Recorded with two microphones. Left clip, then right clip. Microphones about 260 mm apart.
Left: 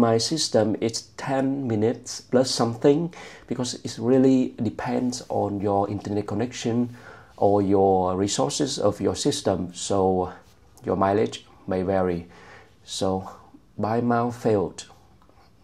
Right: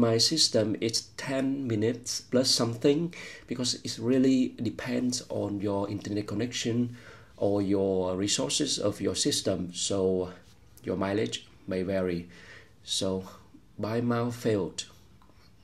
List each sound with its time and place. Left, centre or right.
0.0 s speech: centre